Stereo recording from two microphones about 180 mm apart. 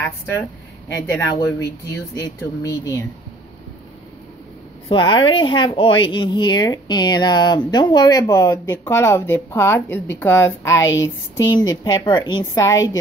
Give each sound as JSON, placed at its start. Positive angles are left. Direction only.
{"t": 0.9, "sound": "speech", "side_deg": 20}
{"t": 4.8, "sound": "a woman's voice", "side_deg": 25}